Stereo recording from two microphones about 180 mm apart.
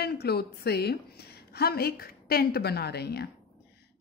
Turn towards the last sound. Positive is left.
turn(degrees=65)  # may be behind; listen again after turning